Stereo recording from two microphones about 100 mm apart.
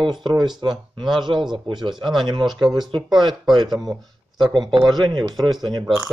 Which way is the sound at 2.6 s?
50° right (ahead or behind).